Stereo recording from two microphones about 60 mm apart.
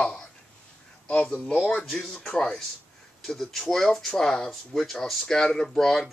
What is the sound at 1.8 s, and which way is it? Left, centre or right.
Speech, centre.